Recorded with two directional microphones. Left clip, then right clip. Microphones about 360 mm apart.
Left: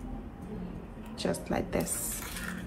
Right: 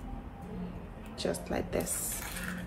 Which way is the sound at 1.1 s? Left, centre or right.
Centre.